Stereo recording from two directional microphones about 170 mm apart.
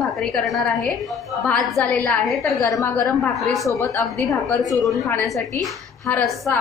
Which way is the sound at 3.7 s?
15° left (ahead or behind).